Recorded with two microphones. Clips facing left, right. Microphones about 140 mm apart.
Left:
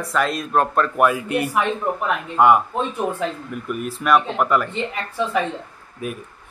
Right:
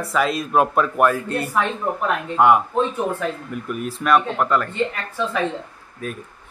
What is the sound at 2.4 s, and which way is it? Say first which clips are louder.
Speech: even; centre (ahead or behind).